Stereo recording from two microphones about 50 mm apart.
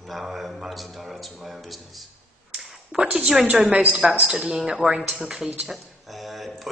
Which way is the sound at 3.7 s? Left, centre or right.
Right.